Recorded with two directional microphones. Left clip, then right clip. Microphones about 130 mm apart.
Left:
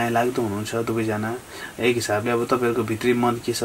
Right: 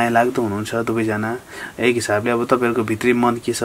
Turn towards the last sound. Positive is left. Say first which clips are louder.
# right 4 dB
turn(degrees=-35)  # may be behind; listen again after turning